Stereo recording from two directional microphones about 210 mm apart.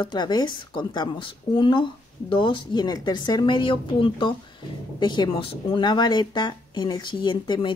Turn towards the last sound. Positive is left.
turn(degrees=20)  # may be behind; listen again after turning